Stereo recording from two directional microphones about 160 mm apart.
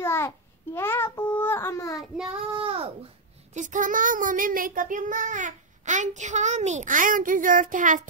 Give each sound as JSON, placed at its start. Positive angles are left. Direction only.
{"t": 0.0, "sound": "a child's voice", "side_deg": 15}
{"t": 0.7, "sound": "child singing", "side_deg": 15}
{"t": 2.5, "sound": "speech", "side_deg": -35}
{"t": 3.5, "sound": "child singing", "side_deg": -50}